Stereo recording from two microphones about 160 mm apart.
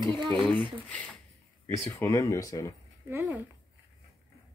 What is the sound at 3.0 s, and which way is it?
Speech, 15° right (ahead or behind).